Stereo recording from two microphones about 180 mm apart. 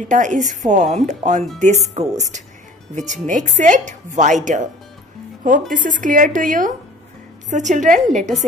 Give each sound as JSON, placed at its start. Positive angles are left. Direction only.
{"t": 0.1, "sound": "a woman's voice", "side_deg": -45}
{"t": 5.7, "sound": "a woman's voice", "side_deg": -50}